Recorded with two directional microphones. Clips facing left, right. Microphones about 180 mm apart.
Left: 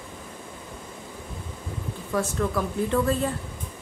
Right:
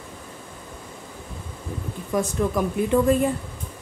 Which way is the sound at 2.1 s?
15° right (ahead or behind).